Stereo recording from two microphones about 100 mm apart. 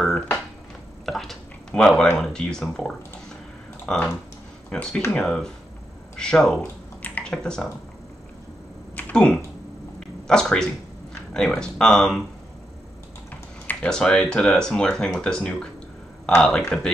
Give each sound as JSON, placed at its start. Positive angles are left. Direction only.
{"t": 0.0, "sound": "a sound", "side_deg": 5}
{"t": 1.0, "sound": "speech", "side_deg": 5}
{"t": 8.9, "sound": "typing", "side_deg": 10}
{"t": 9.9, "sound": "a sound", "side_deg": 5}
{"t": 11.3, "sound": "speech", "side_deg": 5}
{"t": 13.3, "sound": "speech", "side_deg": 10}